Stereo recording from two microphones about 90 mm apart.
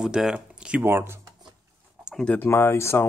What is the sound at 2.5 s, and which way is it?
Speech, 30° left (ahead or behind).